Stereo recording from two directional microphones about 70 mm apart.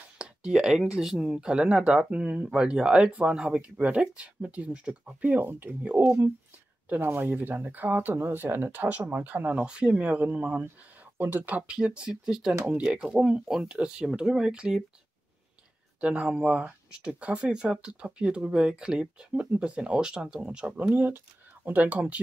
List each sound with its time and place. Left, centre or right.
0.2 s speech: centre
7.1 s speech: right; by 12.5 s centre
12.6 s speech: centre
16.0 s speech: centre